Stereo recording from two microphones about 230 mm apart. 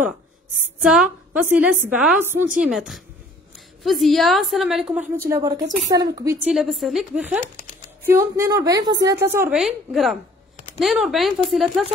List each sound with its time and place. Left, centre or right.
0.8 s a woman's voice: centre
5.3 s a woman's voice: centre
6.4 s a woman's voice: centre